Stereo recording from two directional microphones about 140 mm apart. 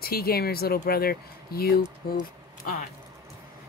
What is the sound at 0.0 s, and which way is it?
Speech, 90° left.